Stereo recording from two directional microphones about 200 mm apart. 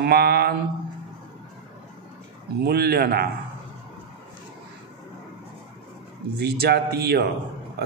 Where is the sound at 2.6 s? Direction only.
50° right (ahead or behind).